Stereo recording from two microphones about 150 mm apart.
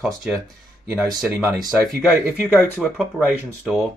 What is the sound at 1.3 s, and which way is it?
Speech, 10° right (ahead or behind).